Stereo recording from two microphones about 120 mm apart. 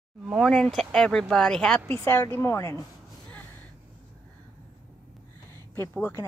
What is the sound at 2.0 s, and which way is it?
Speech, 20° left (ahead or behind).